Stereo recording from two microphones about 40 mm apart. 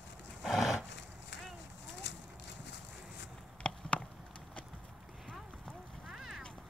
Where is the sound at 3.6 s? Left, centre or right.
Left.